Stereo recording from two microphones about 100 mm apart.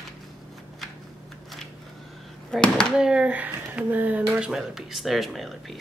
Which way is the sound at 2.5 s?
10° left (ahead or behind).